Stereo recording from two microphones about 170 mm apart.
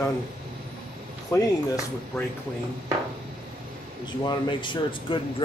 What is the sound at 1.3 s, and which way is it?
Speech, 15° left (ahead or behind).